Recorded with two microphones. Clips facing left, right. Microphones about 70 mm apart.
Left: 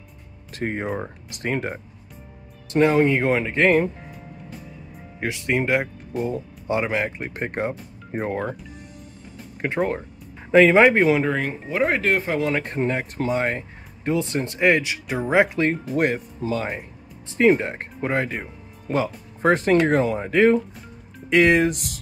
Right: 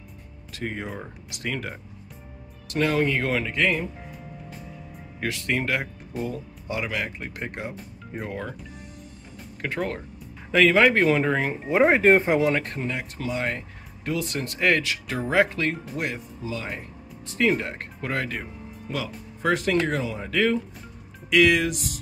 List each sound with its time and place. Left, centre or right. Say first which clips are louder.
0.5 s speech: left 6 dB; left
4.1 s music: left 1 dB; centre
5.2 s speech: left 3 dB; left
9.6 s speech: left 5 dB; left
11.0 s speech: left 2 dB; centre
11.7 s speech: right 4 dB; centre
12.8 s speech: left 6 dB; left
16.0 s speech: left 8 dB; left
17.3 s speech: left 6 dB; left
18.9 s speech: left 8 dB; left